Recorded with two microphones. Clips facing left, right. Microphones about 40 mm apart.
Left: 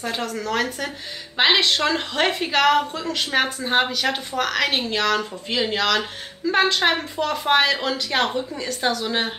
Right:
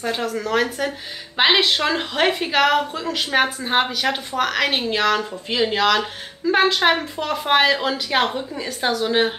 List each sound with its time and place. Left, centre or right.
0.0 s a woman's voice: centre